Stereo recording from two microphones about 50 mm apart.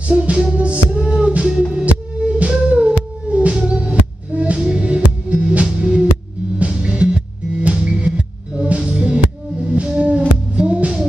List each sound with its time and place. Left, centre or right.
0.1 s music: right